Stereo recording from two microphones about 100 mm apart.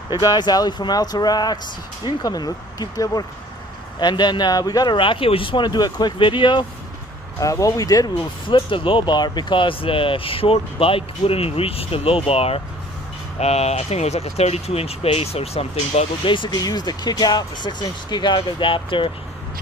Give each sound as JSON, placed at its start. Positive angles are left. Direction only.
{"t": 0.1, "sound": "speech", "side_deg": 40}
{"t": 4.9, "sound": "speech", "side_deg": 60}
{"t": 7.3, "sound": "speech", "side_deg": 35}
{"t": 8.2, "sound": "speech", "side_deg": 55}
{"t": 13.4, "sound": "speech", "side_deg": 90}
{"t": 16.3, "sound": "speech", "side_deg": 55}
{"t": 16.5, "sound": "speech", "side_deg": 40}